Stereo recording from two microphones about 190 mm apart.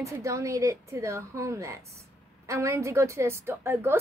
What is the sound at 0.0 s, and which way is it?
A woman's voice, 15° right (ahead or behind).